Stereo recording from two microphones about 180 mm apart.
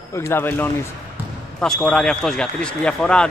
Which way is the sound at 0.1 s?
15° left (ahead or behind).